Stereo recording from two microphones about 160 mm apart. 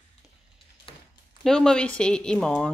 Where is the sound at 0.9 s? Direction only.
35° left (ahead or behind).